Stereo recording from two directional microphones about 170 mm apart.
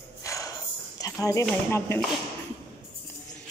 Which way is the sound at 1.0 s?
20° left (ahead or behind).